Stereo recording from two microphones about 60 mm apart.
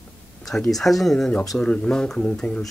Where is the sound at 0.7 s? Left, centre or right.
Centre.